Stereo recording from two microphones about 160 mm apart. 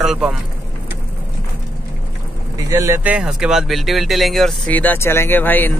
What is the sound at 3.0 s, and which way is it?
Speech, 5° right (ahead or behind).